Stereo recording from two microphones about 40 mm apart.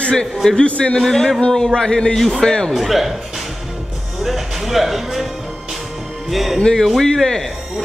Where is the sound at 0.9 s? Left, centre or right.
Centre.